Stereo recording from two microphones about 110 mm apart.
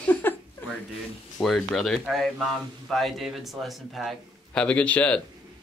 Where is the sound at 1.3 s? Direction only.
Centre (ahead or behind).